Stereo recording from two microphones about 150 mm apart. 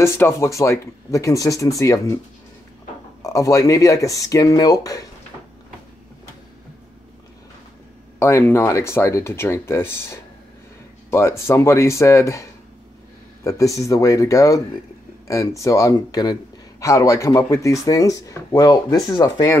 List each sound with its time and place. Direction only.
0.0 s speech: 20° left (ahead or behind)
3.2 s speech: 20° left (ahead or behind)
8.2 s speech: 15° left (ahead or behind)